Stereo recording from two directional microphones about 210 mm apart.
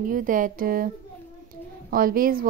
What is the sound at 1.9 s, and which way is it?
Speech, 45° right (ahead or behind).